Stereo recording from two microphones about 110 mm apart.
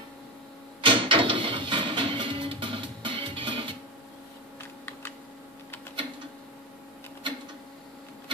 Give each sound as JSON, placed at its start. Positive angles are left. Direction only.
{"t": 0.7, "sound": "music", "side_deg": -50}